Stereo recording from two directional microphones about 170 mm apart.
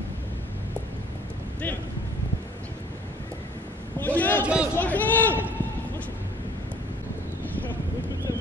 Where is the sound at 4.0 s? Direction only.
10° left (ahead or behind).